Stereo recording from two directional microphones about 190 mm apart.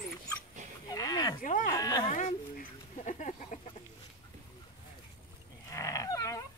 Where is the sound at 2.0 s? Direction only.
45° left (ahead or behind).